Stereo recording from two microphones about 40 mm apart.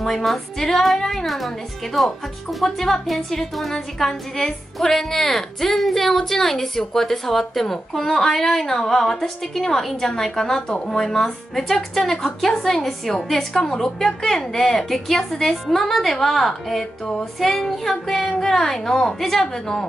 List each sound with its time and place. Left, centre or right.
0.0 s a woman's voice: centre